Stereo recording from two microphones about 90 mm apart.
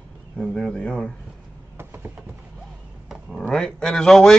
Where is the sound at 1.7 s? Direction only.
25° right (ahead or behind).